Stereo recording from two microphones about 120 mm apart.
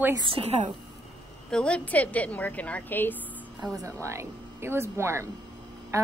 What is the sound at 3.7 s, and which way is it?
Speech, 25° right (ahead or behind).